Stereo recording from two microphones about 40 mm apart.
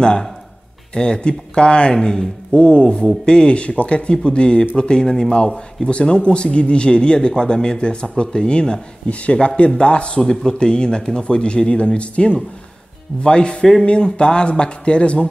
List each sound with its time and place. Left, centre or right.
0.0 s speech: centre
2.0 s speech: centre
2.5 s speech: left
5.9 s a man's voice: left
10.2 s speech: centre